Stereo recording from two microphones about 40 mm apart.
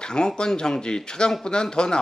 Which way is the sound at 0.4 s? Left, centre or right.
Centre.